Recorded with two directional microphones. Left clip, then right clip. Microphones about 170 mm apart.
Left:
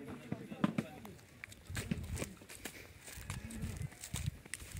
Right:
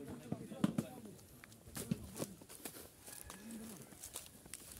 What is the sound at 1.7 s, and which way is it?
Walk, 10° left (ahead or behind).